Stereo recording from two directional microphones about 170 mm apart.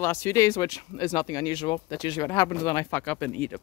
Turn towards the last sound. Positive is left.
turn(degrees=5)  # may be behind; listen again after turning